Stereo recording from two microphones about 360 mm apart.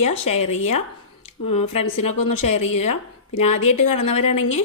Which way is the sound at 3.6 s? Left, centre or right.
Left.